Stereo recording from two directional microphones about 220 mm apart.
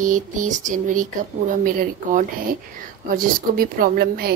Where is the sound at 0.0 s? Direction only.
35° right (ahead or behind).